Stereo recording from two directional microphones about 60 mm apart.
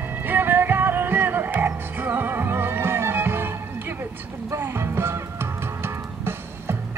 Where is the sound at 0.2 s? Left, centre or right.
Right.